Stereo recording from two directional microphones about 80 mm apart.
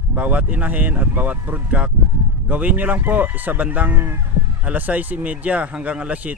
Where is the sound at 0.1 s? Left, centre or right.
Centre.